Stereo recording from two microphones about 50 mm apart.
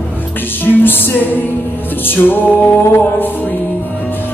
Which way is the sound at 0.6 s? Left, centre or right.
Left.